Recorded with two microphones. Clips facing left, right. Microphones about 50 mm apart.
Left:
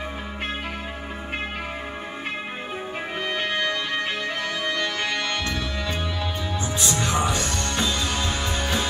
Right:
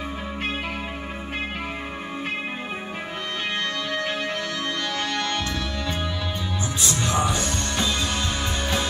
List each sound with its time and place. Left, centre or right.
4.6 s music: centre